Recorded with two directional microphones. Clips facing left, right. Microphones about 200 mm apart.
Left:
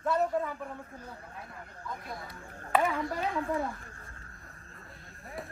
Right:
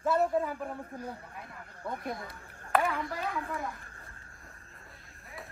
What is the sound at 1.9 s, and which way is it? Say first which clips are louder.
Speech: right 4 dB; 60° right (ahead or behind).